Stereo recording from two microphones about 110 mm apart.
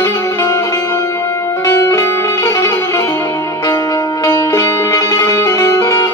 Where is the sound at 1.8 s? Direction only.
25° left (ahead or behind).